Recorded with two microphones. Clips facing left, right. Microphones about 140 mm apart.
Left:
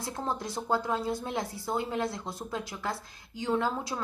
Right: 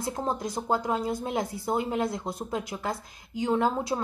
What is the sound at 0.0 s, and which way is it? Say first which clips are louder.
A woman's voice: right 4 dB; 20° right (ahead or behind).